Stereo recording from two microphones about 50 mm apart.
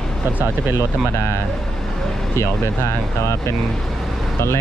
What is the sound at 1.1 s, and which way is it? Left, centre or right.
Speech, left.